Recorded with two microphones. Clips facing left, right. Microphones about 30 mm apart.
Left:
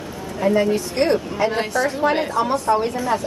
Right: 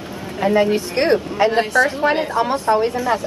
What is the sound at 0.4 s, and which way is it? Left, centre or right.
Speech, right.